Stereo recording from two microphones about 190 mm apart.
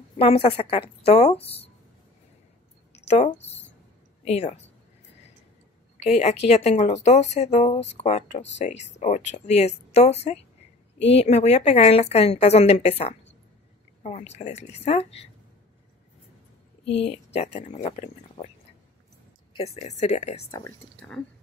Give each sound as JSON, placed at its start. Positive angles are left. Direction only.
{"t": 0.2, "sound": "speech", "side_deg": 30}
{"t": 2.9, "sound": "a sound", "side_deg": 35}
{"t": 4.2, "sound": "speech", "side_deg": 35}
{"t": 6.0, "sound": "speech", "side_deg": 35}
{"t": 16.8, "sound": "speech", "side_deg": 30}
{"t": 19.5, "sound": "speech", "side_deg": 30}